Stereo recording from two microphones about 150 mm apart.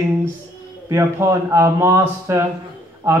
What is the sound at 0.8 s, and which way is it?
A man's voice, 20° right (ahead or behind).